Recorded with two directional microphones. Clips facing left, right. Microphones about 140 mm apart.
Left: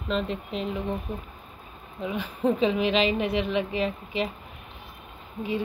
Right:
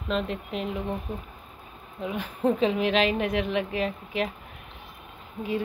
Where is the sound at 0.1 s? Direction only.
5° right (ahead or behind).